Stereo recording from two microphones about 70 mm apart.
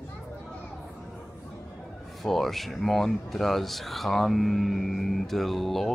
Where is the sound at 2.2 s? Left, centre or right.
Centre.